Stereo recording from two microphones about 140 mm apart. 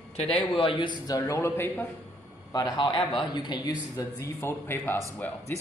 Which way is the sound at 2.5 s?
30° left (ahead or behind).